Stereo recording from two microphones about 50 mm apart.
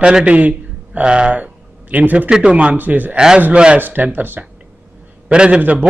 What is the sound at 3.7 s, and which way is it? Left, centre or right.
Speech, right.